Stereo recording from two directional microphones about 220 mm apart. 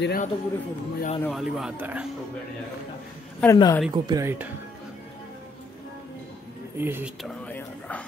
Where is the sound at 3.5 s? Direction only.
20° left (ahead or behind).